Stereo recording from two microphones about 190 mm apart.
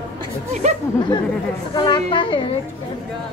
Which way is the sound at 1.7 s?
25° left (ahead or behind).